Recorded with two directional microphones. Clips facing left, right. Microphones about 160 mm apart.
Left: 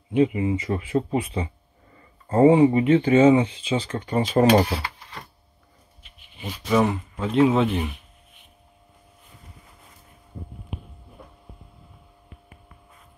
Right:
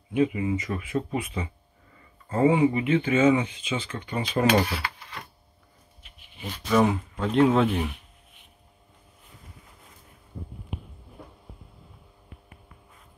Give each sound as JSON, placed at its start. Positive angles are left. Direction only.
{"t": 0.1, "sound": "speech", "side_deg": 30}
{"t": 6.4, "sound": "speech", "side_deg": 5}